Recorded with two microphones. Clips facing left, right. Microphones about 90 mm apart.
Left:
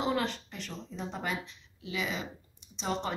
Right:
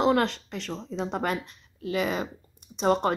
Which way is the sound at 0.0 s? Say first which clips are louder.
Right 8 dB; 85° right.